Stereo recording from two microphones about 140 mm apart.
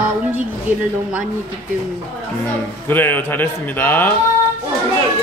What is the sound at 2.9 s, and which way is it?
A man's voice, 15° left (ahead or behind).